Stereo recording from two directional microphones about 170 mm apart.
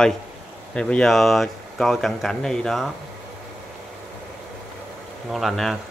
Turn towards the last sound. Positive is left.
turn(degrees=0)  # may be behind; listen again after turning